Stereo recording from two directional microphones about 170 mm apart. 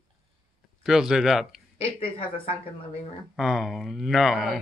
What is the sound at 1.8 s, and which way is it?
Speech, 35° left (ahead or behind).